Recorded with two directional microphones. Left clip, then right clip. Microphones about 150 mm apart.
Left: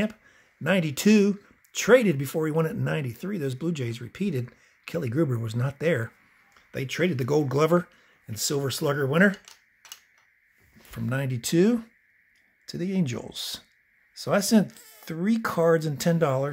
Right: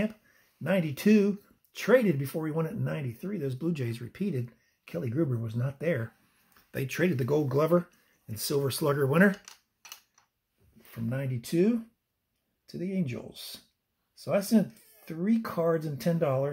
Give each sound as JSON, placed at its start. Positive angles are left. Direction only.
{"t": 0.7, "sound": "speech", "side_deg": 30}
{"t": 6.7, "sound": "speech", "side_deg": 5}
{"t": 7.2, "sound": "speech", "side_deg": 25}
{"t": 11.1, "sound": "speech", "side_deg": 45}
{"t": 14.2, "sound": "speech", "side_deg": 50}